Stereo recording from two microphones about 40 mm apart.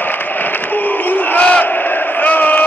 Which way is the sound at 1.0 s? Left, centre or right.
Left.